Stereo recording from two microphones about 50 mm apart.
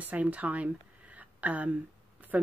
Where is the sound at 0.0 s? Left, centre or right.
Right.